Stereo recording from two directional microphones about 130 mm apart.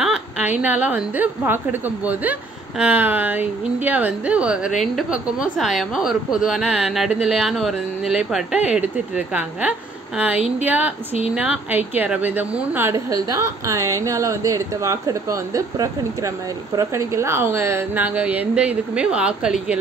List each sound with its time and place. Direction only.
0.0 s a woman's voice: 10° right (ahead or behind)